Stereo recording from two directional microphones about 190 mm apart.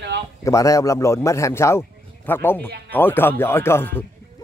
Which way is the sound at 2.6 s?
60° right (ahead or behind).